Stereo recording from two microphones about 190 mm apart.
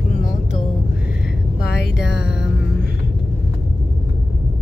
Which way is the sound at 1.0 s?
5° right (ahead or behind).